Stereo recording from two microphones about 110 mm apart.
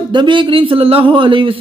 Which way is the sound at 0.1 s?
45° right (ahead or behind).